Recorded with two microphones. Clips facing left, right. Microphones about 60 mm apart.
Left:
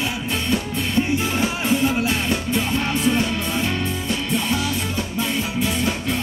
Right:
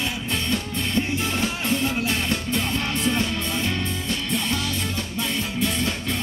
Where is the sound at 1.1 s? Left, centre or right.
Centre.